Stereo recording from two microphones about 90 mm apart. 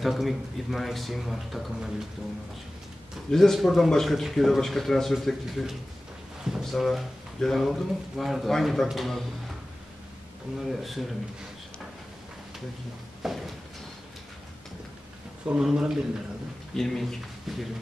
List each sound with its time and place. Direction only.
0.0 s speech: centre (ahead or behind)
3.3 s speech: 5° left (ahead or behind)
10.7 s speech: centre (ahead or behind)
13.2 s a sound: centre (ahead or behind)
15.4 s a man's voice: 10° right (ahead or behind)
16.7 s speech: 5° left (ahead or behind)